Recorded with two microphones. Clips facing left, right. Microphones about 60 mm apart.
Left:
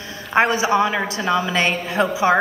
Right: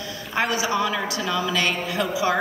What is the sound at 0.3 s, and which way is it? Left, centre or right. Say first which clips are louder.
A woman's voice: left 7 dB; left.